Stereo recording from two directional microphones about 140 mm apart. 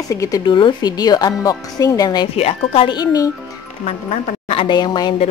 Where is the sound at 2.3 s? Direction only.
45° left (ahead or behind); by 3.3 s 30° left (ahead or behind).